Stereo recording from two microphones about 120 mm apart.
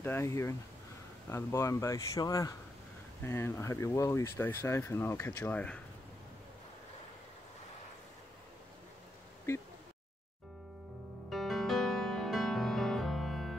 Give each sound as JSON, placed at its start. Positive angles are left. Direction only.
{"t": 0.0, "sound": "speech", "side_deg": 20}
{"t": 11.2, "sound": "music", "side_deg": 0}